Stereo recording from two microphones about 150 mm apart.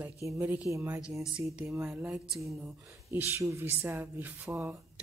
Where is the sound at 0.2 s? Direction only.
20° right (ahead or behind); by 2.7 s 5° right (ahead or behind).